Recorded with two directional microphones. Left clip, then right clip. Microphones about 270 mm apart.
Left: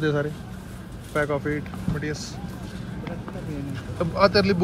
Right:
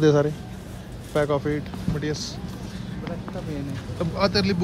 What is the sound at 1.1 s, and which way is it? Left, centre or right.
A man's voice, centre.